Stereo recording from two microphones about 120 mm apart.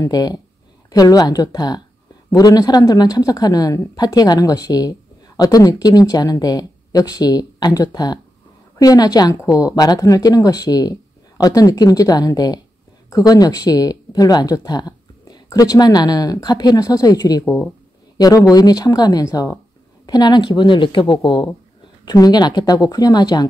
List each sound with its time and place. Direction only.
0.0 s speech: 35° left (ahead or behind)
18.1 s a sound: 30° left (ahead or behind)
18.5 s speech: 30° left (ahead or behind)